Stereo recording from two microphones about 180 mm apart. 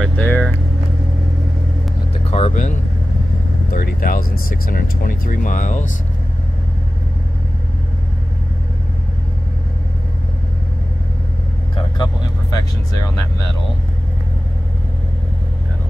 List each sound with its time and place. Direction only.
0.0 s vehicle: 10° left (ahead or behind)
2.3 s vehicle: 35° left (ahead or behind)
3.7 s speech: 55° left (ahead or behind)
11.7 s vehicle: 25° left (ahead or behind)